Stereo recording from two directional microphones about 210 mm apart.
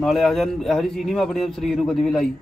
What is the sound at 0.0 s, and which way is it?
A man's voice, centre (ahead or behind).